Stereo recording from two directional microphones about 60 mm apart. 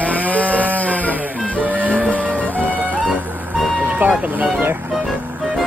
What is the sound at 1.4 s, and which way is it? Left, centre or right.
Music, left.